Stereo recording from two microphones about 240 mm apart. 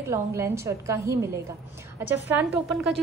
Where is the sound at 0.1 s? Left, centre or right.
Centre.